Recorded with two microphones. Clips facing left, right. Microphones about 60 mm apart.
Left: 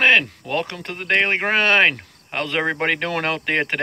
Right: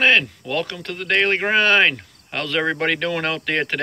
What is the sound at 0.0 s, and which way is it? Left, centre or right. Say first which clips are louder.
Speech: left 1 dB; left.